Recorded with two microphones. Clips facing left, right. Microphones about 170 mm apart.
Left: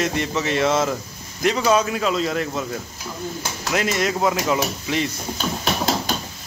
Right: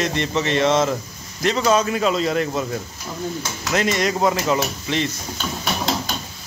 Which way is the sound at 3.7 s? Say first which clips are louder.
Right 2 dB; 5° left (ahead or behind).